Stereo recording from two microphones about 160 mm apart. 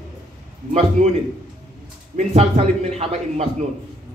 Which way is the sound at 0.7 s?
40° right (ahead or behind).